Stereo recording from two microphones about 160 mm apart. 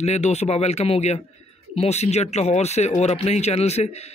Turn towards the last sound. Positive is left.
turn(degrees=40)  # may be behind; listen again after turning